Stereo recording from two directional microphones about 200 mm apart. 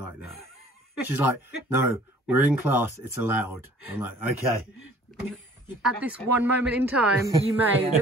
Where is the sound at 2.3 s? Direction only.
10° right (ahead or behind).